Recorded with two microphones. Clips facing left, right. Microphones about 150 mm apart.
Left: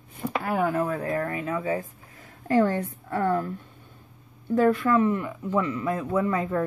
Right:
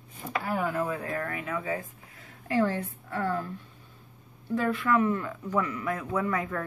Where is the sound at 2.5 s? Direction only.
45° left (ahead or behind).